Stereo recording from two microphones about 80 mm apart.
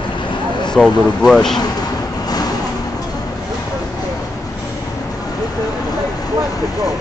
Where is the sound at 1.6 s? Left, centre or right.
Left.